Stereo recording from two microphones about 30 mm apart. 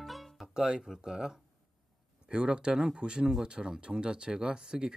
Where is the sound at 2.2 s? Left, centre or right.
Right.